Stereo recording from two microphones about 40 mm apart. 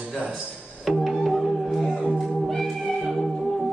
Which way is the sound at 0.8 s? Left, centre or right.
Centre.